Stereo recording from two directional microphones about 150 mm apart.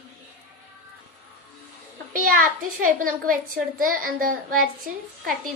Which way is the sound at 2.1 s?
65° right (ahead or behind).